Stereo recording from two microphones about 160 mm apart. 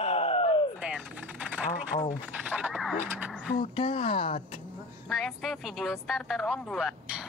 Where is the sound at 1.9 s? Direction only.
45° left (ahead or behind).